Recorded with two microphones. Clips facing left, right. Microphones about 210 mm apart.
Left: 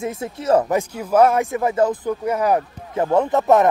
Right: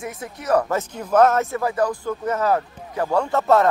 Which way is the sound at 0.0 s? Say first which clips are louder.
Left 6 dB; 25° left (ahead or behind).